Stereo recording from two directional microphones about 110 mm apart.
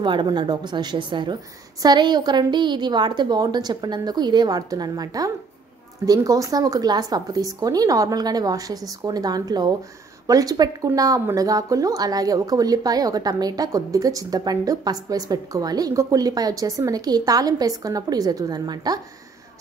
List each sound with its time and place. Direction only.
0.0 s speech: 45° right (ahead or behind)